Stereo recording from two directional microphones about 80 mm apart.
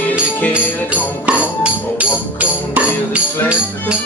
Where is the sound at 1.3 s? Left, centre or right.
Centre.